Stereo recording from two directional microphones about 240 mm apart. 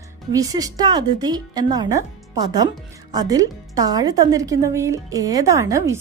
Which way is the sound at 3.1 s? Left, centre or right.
Centre.